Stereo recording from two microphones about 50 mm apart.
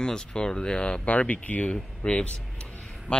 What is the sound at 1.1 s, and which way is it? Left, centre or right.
Speech, left.